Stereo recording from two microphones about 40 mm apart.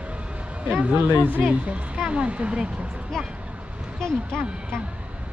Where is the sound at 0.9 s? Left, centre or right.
Right.